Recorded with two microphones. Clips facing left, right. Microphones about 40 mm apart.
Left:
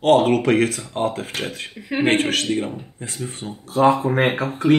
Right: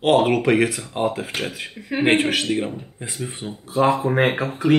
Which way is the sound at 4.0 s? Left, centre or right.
Centre.